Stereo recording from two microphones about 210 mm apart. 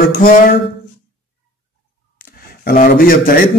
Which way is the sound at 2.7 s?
45° left (ahead or behind).